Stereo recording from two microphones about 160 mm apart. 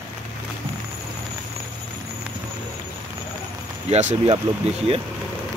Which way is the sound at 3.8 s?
45° right (ahead or behind).